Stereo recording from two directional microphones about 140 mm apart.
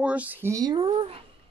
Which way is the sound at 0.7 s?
40° right (ahead or behind).